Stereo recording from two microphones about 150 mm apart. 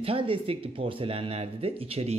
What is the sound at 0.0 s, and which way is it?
Speech, 35° right (ahead or behind).